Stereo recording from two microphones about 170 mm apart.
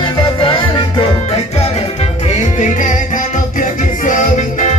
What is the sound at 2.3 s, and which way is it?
Music, 45° left (ahead or behind).